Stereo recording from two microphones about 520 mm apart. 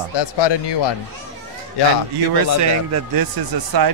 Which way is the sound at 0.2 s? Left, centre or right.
Left.